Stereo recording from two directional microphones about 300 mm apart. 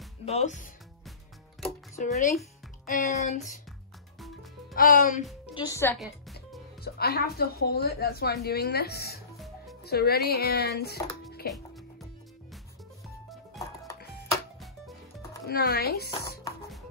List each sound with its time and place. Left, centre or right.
0.2 s speech: left
2.9 s speech: left
4.7 s speech: left
5.5 s a woman's voice: centre
6.8 s speech: left
13.6 s music: centre
15.4 s speech: left
16.1 s speech: centre